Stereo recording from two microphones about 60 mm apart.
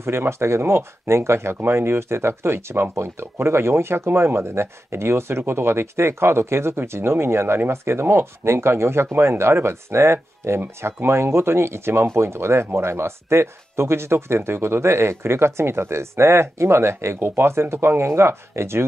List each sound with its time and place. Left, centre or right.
0.0 s speech: right